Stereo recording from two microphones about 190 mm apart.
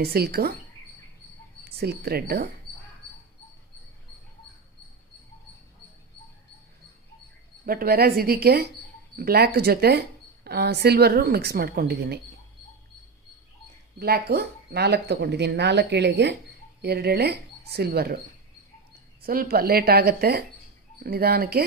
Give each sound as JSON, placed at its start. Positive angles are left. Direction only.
{"t": 0.0, "sound": "speech", "side_deg": -55}
{"t": 1.8, "sound": "speech", "side_deg": -55}
{"t": 7.6, "sound": "speech", "side_deg": -50}
{"t": 13.9, "sound": "speech", "side_deg": -55}
{"t": 19.2, "sound": "speech", "side_deg": -50}